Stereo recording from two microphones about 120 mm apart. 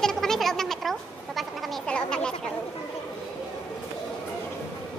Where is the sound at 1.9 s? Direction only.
5° left (ahead or behind).